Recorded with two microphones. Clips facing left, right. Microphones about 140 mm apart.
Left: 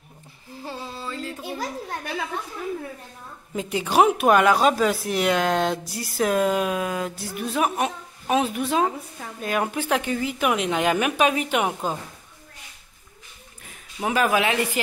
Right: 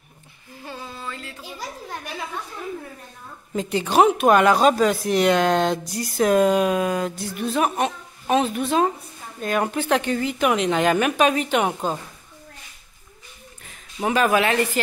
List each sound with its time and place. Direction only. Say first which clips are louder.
0.7 s a sound: left 1 dB; 30° left (ahead or behind)
3.5 s a woman's voice: right 2 dB; 5° left (ahead or behind)
13.9 s speech: right 2 dB; 5° left (ahead or behind)